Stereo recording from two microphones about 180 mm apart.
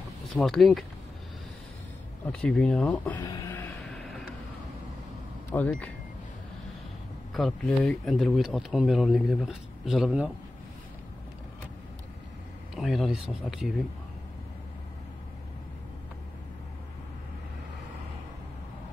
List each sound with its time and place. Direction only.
0.4 s speech: centre (ahead or behind)
2.4 s speech: 5° left (ahead or behind)
3.2 s speech: 20° left (ahead or behind)
3.9 s vehicle: centre (ahead or behind)
5.5 s speech: 10° left (ahead or behind)
7.3 s speech: centre (ahead or behind)
12.7 s speech: centre (ahead or behind)